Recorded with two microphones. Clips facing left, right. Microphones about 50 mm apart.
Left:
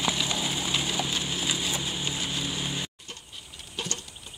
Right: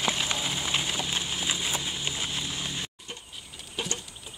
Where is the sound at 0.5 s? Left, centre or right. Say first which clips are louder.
Left 1 dB; right.